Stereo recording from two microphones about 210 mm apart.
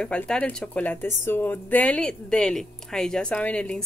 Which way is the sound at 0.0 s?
5° left (ahead or behind).